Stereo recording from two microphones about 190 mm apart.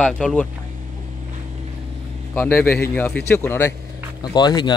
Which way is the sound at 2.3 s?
10° left (ahead or behind).